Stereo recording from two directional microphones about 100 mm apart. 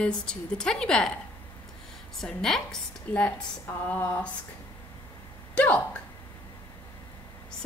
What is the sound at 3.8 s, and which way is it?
Speech, 15° left (ahead or behind).